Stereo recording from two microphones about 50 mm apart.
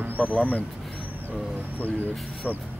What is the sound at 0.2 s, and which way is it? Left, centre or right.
Speech, left.